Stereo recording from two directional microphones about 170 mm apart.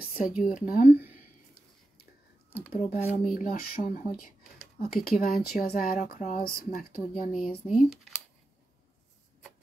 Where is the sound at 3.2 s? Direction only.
55° left (ahead or behind).